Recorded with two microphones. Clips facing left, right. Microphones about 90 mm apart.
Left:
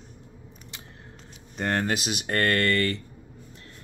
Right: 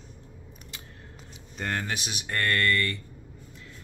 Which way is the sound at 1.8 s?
55° left (ahead or behind).